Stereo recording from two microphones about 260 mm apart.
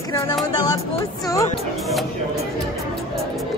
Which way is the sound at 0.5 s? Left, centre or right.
Centre.